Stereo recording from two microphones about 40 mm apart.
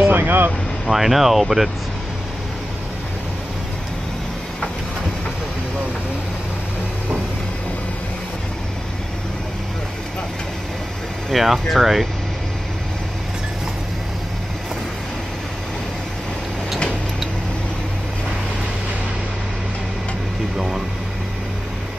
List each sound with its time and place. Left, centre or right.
0.1 s speech: right
0.8 s speech: centre
11.3 s speech: centre
20.5 s speech: centre